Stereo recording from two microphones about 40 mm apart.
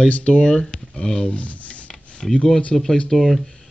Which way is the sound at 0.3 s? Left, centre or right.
Centre.